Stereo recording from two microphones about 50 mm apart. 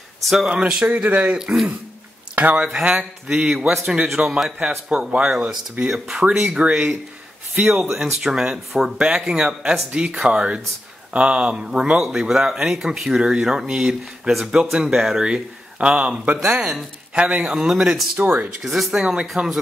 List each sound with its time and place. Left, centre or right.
0.2 s speech: centre
0.5 s speech: centre
1.3 s speech: centre
2.3 s speech: right
2.6 s speech: centre
4.2 s speech: right
7.9 s speech: centre
15.2 s speech: centre
16.3 s speech: centre
17.1 s speech: right
18.2 s speech: right
18.6 s speech: centre